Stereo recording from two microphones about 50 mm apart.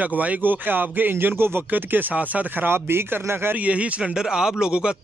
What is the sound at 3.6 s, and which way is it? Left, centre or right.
Speech, right.